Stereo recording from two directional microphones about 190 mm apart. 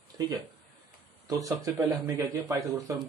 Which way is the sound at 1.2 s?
20° right (ahead or behind).